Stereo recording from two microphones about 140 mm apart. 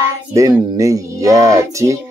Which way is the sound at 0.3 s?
25° right (ahead or behind).